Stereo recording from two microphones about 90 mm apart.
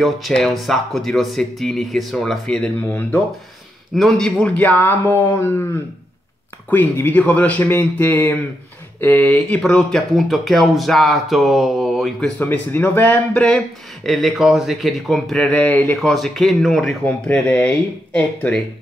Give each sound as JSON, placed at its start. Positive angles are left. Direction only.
{"t": 0.0, "sound": "speech", "side_deg": 0}
{"t": 3.9, "sound": "speech", "side_deg": 5}
{"t": 4.6, "sound": "a man's voice", "side_deg": 20}
{"t": 6.7, "sound": "a man's voice", "side_deg": 20}
{"t": 9.6, "sound": "speech", "side_deg": 5}
{"t": 12.4, "sound": "a man's voice", "side_deg": 20}
{"t": 14.0, "sound": "speech", "side_deg": 0}
{"t": 16.0, "sound": "speech", "side_deg": 0}
{"t": 17.0, "sound": "speech", "side_deg": 15}